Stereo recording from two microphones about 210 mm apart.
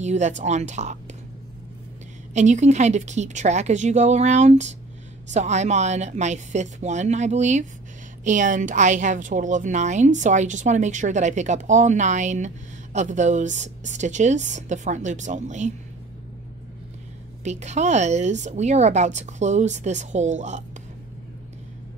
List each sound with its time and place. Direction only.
0.0 s a woman's voice: 35° right (ahead or behind)
2.3 s a woman's voice: 35° right (ahead or behind)
17.4 s a woman's voice: 35° right (ahead or behind)